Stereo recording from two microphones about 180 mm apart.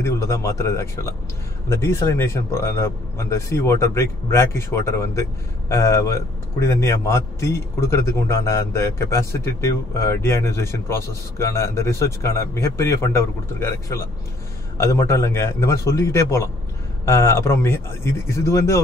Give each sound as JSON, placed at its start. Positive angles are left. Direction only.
{"t": 0.0, "sound": "speech", "side_deg": 15}